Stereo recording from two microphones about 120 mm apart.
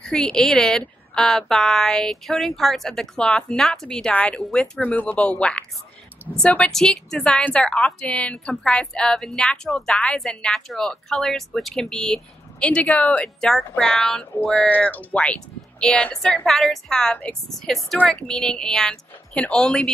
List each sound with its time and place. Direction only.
0.0 s a woman's voice: 5° left (ahead or behind)